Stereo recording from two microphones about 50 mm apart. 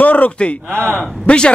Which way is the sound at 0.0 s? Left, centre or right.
Left.